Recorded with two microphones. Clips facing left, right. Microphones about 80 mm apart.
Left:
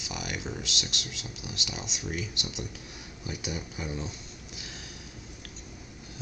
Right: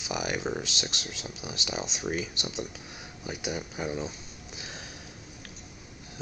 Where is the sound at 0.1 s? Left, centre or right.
Right.